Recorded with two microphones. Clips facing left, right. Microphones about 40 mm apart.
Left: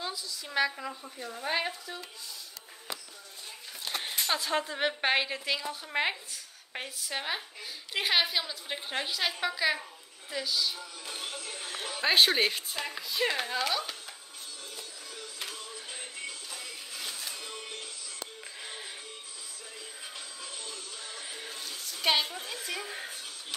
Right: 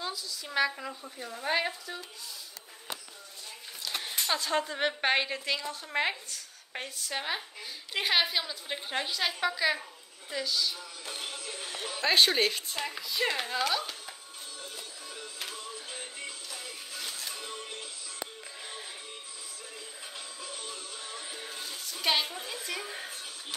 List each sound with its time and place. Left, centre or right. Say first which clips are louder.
0.0 s a woman's voice: even; centre
4.3 s a woman's voice: right 1 dB; centre
11.1 s music: even; centre
12.0 s a woman's voice: even; centre
15.3 s music: even; centre
18.6 s music: left 1 dB; centre
20.2 s music: right 3 dB; centre
21.2 s music: even; centre